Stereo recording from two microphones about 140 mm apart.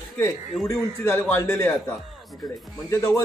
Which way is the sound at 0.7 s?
15° left (ahead or behind).